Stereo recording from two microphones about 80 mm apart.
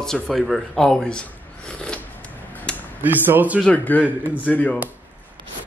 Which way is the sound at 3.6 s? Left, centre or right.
Centre.